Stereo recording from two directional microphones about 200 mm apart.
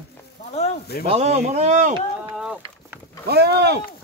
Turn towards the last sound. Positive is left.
turn(degrees=-55)  # may be behind; listen again after turning